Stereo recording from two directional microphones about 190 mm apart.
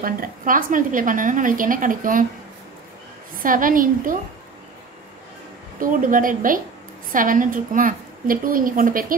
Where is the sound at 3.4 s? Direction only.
45° right (ahead or behind).